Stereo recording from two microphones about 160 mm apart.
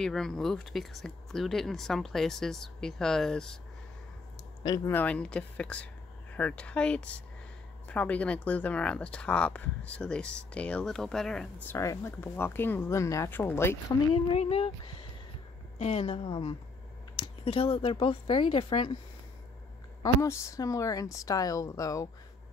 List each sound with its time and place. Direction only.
0.0 s speech: 5° left (ahead or behind)
4.6 s speech: 25° left (ahead or behind)
4.9 s speech: 10° left (ahead or behind)
11.7 s speech: 15° left (ahead or behind)
14.1 s speech: 40° left (ahead or behind)
15.8 s speech: 40° left (ahead or behind)
20.0 s speech: 20° left (ahead or behind)